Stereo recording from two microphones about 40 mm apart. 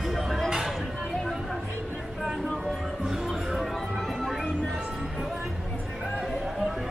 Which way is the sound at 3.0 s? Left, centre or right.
Centre.